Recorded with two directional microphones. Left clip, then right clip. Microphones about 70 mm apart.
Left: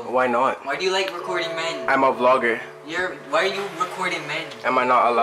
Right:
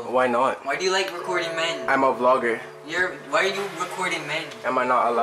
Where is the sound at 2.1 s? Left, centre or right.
Centre.